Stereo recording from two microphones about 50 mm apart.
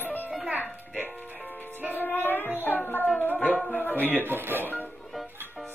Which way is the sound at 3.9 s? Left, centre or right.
Right.